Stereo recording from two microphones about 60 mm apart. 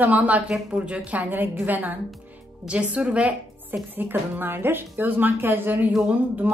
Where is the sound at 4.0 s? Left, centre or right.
Right.